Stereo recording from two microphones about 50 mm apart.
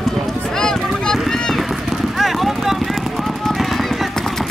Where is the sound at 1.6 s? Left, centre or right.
Centre.